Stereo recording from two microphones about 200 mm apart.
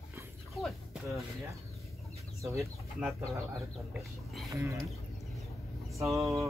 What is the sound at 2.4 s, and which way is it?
Speech, 15° right (ahead or behind).